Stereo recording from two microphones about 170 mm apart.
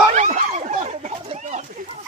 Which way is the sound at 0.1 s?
45° right (ahead or behind).